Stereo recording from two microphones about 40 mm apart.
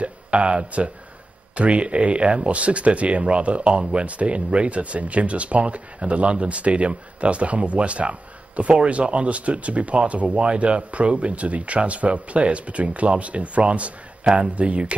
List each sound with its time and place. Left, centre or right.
0.0 s speech: right